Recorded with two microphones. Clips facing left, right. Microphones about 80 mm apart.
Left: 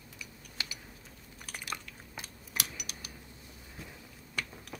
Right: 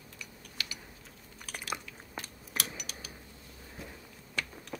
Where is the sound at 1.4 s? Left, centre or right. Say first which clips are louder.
Right 1 dB; centre.